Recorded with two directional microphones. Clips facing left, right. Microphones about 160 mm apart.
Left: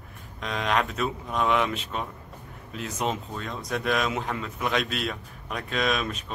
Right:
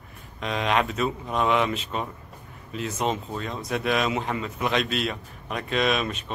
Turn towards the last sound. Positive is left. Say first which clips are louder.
# right 2 dB
turn(degrees=0)  # may be behind; listen again after turning